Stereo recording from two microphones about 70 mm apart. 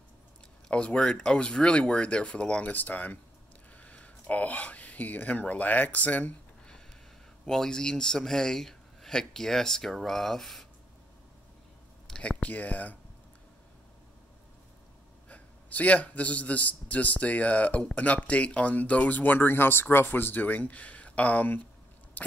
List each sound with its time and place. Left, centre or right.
0.7 s speech: centre
7.4 s speech: centre
12.1 s speech: centre
15.2 s speech: left